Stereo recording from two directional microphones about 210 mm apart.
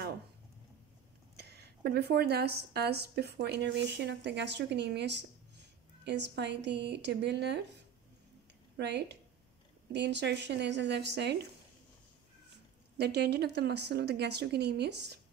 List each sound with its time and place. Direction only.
1.3 s speech: 50° right (ahead or behind)
8.7 s speech: 55° right (ahead or behind)
12.9 s speech: 50° right (ahead or behind)